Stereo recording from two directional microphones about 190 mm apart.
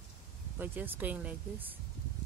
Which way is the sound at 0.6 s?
10° right (ahead or behind).